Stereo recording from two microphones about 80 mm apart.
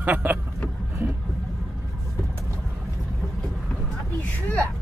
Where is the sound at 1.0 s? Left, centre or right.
Right.